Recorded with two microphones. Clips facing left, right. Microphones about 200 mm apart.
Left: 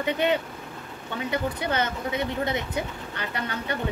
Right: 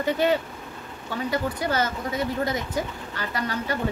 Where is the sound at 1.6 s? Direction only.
20° left (ahead or behind).